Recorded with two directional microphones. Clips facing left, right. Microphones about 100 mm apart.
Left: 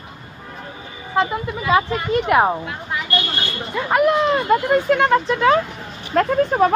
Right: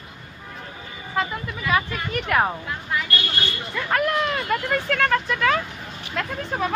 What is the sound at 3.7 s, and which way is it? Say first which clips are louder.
Speech: left 6 dB; 25° left (ahead or behind).